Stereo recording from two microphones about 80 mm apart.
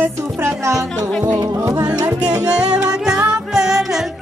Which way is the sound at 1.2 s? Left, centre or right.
Right.